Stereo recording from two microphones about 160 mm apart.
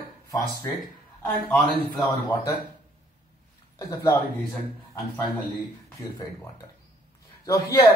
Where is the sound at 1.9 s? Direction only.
Centre (ahead or behind).